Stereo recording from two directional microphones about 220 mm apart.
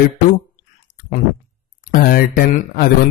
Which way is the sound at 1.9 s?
40° left (ahead or behind).